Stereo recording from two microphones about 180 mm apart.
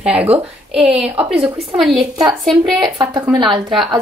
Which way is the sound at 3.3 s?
25° right (ahead or behind).